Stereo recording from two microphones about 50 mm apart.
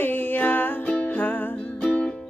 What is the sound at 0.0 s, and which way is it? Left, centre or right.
Music, left.